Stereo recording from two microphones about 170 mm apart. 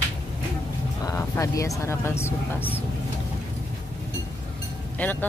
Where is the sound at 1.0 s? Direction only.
20° left (ahead or behind).